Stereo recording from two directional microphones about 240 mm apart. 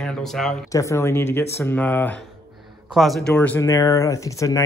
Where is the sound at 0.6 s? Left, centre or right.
Centre.